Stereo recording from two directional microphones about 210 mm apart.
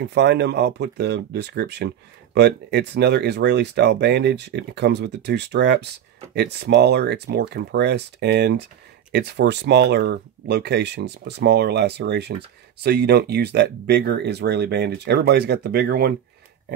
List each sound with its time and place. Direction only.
0.0 s speech: 55° right (ahead or behind)